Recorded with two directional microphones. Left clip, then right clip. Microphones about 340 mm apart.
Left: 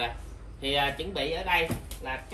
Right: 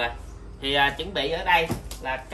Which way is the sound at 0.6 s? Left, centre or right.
Centre.